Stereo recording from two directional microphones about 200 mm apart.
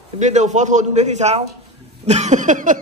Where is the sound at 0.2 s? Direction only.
35° right (ahead or behind).